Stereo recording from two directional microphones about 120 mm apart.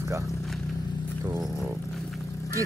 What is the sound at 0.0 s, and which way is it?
Speech, 25° right (ahead or behind).